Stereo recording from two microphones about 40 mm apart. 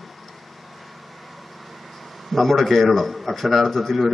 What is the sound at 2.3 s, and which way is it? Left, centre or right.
A man's voice, centre.